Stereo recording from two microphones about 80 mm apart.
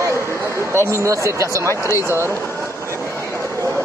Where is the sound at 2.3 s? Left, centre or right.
Left.